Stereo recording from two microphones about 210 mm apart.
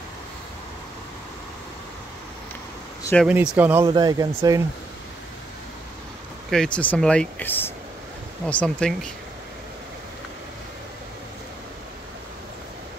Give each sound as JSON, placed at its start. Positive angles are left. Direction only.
{"t": 3.0, "sound": "a sound", "side_deg": 10}
{"t": 3.5, "sound": "speech", "side_deg": -10}
{"t": 3.9, "sound": "speech", "side_deg": -20}
{"t": 6.5, "sound": "speech", "side_deg": 5}